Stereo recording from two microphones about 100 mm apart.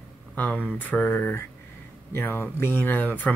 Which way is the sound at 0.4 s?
15° left (ahead or behind).